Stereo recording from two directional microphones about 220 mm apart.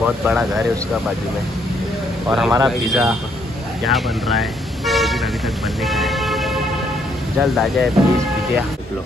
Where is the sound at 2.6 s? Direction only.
Centre (ahead or behind).